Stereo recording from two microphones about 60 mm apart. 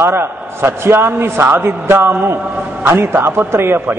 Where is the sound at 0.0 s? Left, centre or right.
Right.